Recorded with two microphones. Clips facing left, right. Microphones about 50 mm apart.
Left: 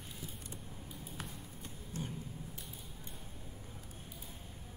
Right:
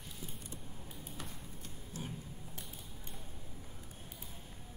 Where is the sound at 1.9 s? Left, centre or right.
Left.